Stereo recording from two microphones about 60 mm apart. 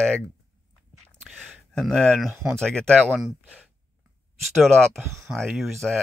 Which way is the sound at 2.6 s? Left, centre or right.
Centre.